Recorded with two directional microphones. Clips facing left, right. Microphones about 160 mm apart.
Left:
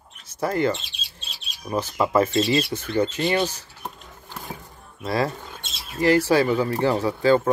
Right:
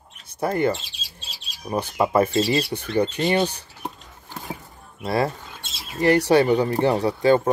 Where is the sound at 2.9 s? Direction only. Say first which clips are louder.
Right 1 dB; 30° right (ahead or behind).